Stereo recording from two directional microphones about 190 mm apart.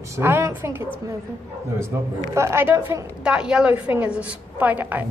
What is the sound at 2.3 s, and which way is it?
A woman's voice, 15° right (ahead or behind).